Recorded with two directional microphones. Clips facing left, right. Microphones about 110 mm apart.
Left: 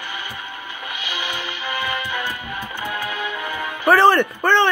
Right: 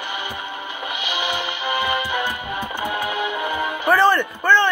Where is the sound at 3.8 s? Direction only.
70° left (ahead or behind).